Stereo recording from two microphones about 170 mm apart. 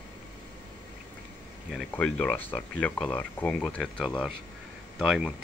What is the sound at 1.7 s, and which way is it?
Speech, 5° left (ahead or behind).